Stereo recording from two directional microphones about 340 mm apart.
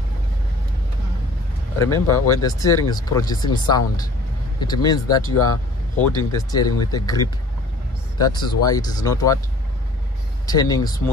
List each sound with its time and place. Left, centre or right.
2.0 s speech: left
2.4 s speech: centre
8.3 s speech: centre
10.4 s speech: centre